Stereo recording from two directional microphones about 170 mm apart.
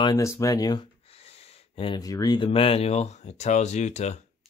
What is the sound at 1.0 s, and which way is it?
Speech, 35° left (ahead or behind).